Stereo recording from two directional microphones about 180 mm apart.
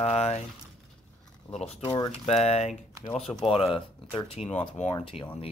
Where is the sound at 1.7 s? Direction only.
30° left (ahead or behind).